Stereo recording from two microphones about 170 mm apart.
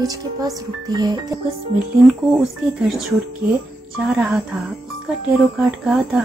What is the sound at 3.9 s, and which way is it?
Speech, centre (ahead or behind).